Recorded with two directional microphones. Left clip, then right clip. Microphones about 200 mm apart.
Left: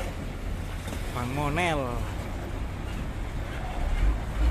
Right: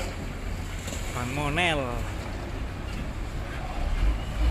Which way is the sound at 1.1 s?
5° left (ahead or behind).